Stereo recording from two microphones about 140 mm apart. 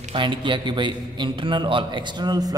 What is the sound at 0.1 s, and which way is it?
A man's voice, 35° right (ahead or behind).